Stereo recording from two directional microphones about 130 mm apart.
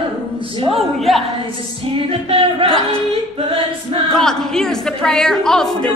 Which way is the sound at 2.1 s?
45° right (ahead or behind).